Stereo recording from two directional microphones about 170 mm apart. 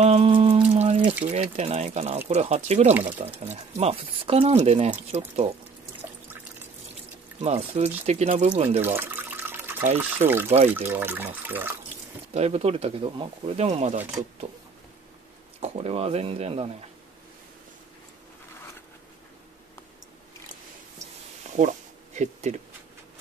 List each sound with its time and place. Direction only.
0.0 s a sound: 35° right (ahead or behind)
0.7 s water: 40° right (ahead or behind)
1.3 s speech: 40° right (ahead or behind)
7.3 s speech: 35° right (ahead or behind)
8.8 s water: 10° right (ahead or behind)
9.9 s speech: 10° right (ahead or behind)
12.4 s speech: 40° right (ahead or behind)
15.6 s speech: 40° right (ahead or behind)
21.5 s a sound: 45° right (ahead or behind)